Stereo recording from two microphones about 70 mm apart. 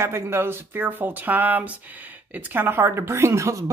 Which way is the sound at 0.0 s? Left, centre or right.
Right.